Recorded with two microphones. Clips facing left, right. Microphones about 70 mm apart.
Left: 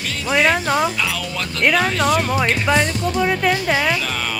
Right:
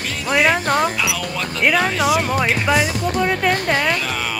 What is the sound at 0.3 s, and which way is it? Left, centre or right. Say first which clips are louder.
Speech: even; centre.